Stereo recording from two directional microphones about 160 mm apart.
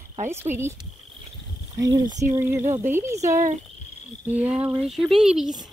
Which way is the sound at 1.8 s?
20° right (ahead or behind).